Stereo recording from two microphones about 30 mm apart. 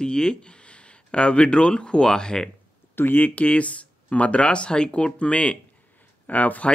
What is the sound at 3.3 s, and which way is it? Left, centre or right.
Speech, left.